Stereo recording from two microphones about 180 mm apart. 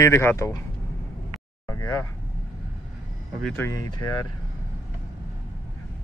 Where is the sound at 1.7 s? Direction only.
15° left (ahead or behind).